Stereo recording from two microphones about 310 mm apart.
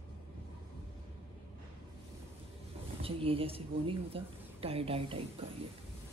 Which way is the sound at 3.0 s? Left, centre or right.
Centre.